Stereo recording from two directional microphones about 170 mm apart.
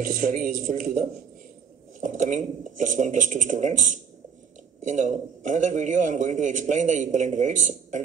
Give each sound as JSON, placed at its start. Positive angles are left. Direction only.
{"t": 0.0, "sound": "a man's voice", "side_deg": -50}